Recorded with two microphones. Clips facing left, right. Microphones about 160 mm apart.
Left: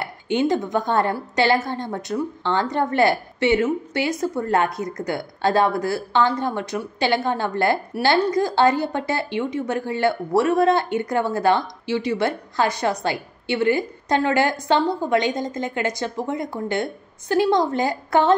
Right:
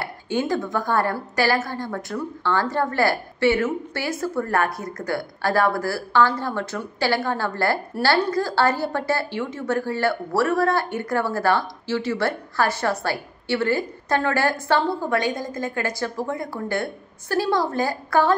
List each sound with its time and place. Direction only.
0.0 s a woman's voice: 20° left (ahead or behind)